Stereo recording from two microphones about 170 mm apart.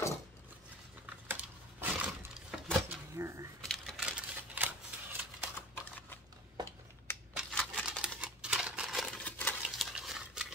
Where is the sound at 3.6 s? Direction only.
Centre (ahead or behind).